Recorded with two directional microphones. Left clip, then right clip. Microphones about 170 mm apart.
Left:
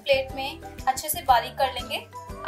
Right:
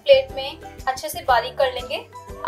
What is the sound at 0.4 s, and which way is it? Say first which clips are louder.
Music: right 3 dB; 35° right (ahead or behind).